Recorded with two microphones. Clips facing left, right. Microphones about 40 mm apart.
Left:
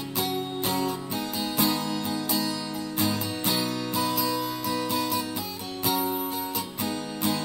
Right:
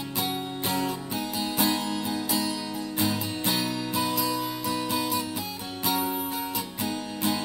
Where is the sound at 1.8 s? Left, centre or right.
Centre.